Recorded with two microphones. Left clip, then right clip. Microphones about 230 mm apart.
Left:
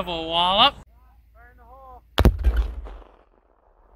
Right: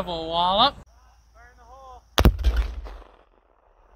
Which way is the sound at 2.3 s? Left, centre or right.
Right.